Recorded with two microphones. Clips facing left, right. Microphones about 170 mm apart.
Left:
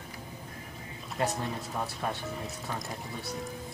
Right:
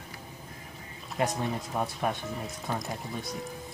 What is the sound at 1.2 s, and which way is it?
Speech, 15° right (ahead or behind).